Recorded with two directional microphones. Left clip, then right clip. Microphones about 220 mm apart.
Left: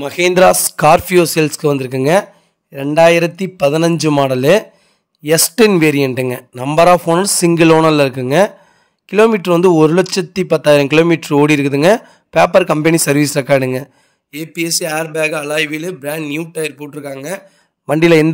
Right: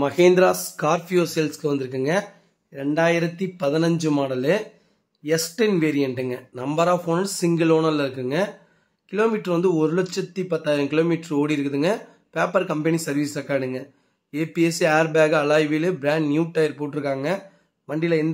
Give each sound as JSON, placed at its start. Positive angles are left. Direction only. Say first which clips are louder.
{"t": 0.0, "sound": "speech", "louder": "left 6 dB", "side_deg": 45}
{"t": 14.4, "sound": "speech", "louder": "left 2 dB", "side_deg": 0}
{"t": 17.8, "sound": "speech", "louder": "left 12 dB", "side_deg": 50}